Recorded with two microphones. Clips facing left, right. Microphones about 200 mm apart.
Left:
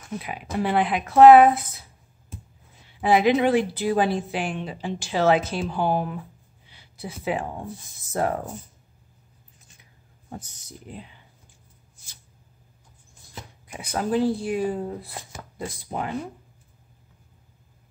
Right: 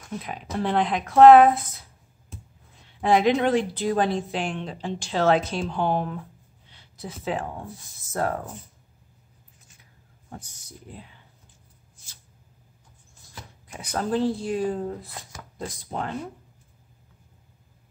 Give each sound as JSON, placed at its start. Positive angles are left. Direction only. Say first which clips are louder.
{"t": 0.2, "sound": "a woman's voice", "louder": "left 1 dB", "side_deg": 5}
{"t": 2.8, "sound": "a woman's voice", "louder": "left 1 dB", "side_deg": 5}
{"t": 10.3, "sound": "speech", "louder": "left 3 dB", "side_deg": 20}
{"t": 13.3, "sound": "a woman's voice", "louder": "left 2 dB", "side_deg": 15}